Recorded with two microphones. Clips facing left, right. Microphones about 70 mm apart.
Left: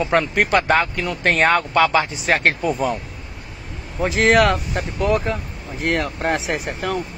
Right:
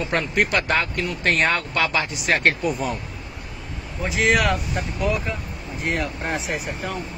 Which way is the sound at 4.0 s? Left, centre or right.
Left.